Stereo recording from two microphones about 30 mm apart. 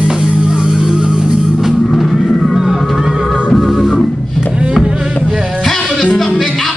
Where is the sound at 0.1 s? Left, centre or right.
Right.